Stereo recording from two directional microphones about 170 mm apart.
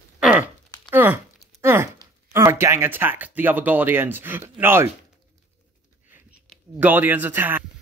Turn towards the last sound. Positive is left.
turn(degrees=-10)  # may be behind; listen again after turning